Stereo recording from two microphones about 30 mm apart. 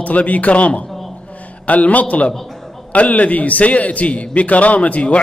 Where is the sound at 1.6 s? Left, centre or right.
Left.